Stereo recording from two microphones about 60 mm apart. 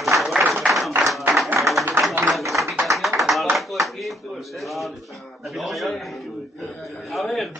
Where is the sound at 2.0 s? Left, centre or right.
Right.